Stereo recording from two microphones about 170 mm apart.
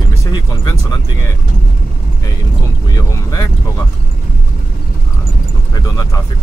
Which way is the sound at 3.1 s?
20° left (ahead or behind).